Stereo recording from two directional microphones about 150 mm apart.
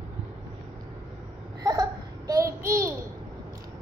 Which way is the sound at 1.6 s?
25° right (ahead or behind).